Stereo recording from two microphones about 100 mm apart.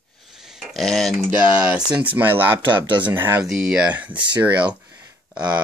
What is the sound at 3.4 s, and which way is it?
Speech, 5° right (ahead or behind).